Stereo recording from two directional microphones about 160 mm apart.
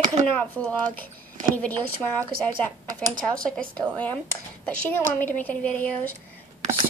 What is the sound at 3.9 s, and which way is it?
Speech, 10° left (ahead or behind).